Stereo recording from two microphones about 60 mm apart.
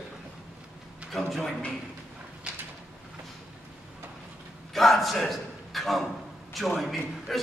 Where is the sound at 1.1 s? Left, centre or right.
Centre.